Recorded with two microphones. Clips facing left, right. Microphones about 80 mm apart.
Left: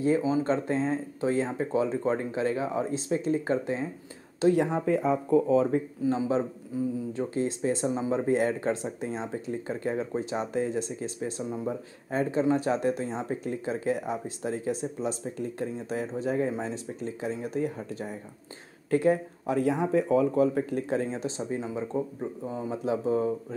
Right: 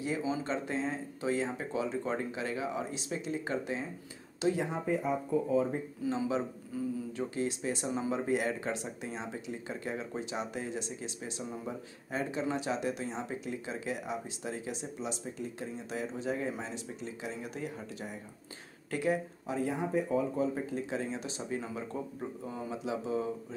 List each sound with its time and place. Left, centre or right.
0.0 s speech: left
4.4 s speech: left
6.0 s speech: left
19.4 s speech: left
22.7 s speech: left